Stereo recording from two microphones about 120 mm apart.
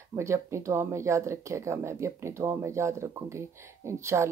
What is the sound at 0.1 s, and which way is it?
Speech, 25° right (ahead or behind).